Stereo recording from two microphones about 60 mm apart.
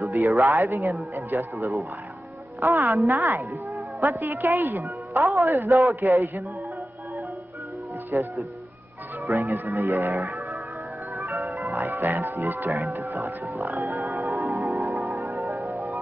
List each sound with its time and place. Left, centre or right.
0.0 s speech: right
4.4 s music: right
4.8 s speech: right
6.0 s music: right
8.1 s speech: right
9.8 s speech: right
11.7 s music: right
12.7 s speech: right
13.1 s music: right
13.7 s speech: right
14.2 s music: right
14.7 s music: right
15.7 s music: right